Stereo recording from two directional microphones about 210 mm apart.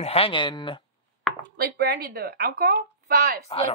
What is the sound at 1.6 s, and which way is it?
Speech, 50° right (ahead or behind).